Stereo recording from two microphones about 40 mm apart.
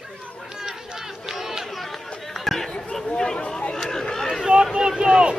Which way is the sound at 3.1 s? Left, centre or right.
Centre.